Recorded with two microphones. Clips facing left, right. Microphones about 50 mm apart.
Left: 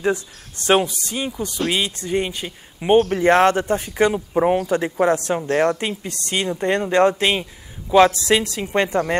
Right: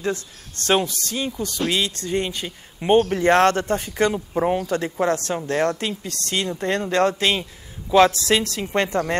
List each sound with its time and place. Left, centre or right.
0.0 s speech: centre